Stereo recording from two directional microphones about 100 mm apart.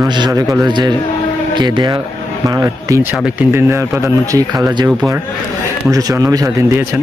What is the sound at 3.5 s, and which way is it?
Speech, 25° right (ahead or behind).